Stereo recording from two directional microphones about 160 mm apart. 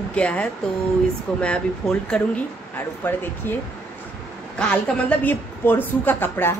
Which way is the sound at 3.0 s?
10° left (ahead or behind).